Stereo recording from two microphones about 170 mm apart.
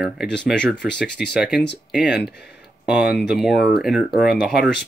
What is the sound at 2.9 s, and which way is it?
Speech, 5° right (ahead or behind).